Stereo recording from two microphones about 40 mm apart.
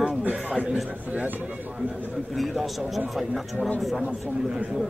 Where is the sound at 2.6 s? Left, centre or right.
Centre.